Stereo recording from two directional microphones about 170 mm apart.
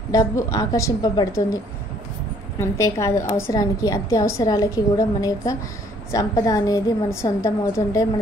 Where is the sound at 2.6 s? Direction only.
15° left (ahead or behind).